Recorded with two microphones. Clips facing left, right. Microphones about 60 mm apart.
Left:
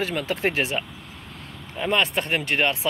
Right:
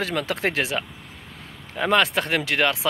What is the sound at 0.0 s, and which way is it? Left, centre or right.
Speech, right.